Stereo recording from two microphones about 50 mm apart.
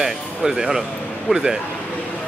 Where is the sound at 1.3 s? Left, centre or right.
Centre.